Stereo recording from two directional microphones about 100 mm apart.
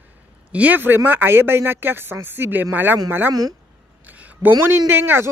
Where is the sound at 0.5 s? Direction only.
15° right (ahead or behind).